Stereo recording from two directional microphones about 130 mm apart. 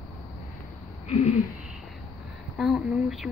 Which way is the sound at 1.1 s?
55° left (ahead or behind).